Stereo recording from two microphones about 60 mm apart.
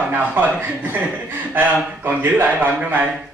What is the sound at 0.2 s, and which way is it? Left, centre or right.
Speech, right.